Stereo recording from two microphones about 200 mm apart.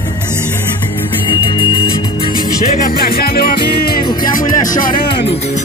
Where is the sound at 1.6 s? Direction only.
25° left (ahead or behind).